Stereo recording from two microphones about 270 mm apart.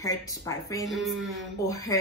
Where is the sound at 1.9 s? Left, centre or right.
Centre.